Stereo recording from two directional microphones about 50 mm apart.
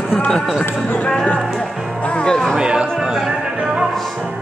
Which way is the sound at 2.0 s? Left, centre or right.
Centre.